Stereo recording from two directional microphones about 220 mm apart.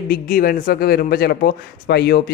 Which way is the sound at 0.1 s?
40° left (ahead or behind).